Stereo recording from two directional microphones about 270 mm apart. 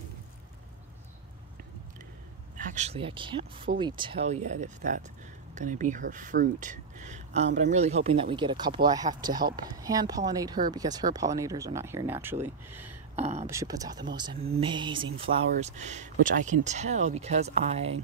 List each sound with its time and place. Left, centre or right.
2.5 s speech: right; by 12.4 s centre
13.1 s speech: right
13.5 s speech: centre